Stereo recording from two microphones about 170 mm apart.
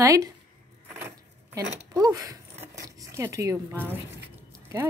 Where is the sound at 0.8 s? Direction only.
10° right (ahead or behind).